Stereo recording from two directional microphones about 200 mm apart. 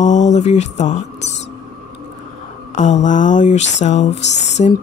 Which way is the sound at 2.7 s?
40° left (ahead or behind).